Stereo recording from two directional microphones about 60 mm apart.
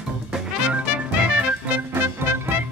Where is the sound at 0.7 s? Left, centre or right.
Right.